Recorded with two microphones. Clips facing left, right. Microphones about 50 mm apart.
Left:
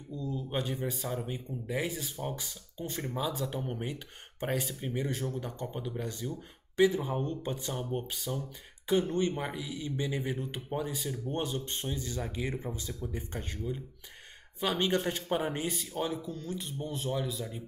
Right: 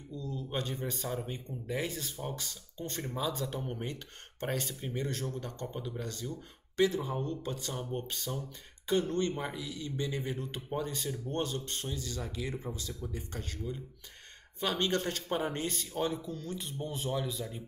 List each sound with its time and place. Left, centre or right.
0.1 s speech: centre
7.8 s speech: centre